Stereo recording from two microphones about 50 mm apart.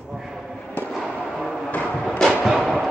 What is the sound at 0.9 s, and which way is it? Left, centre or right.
Fireworks, centre.